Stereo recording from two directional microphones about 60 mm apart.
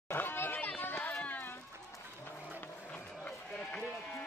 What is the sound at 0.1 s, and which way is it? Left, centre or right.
Chatter, left.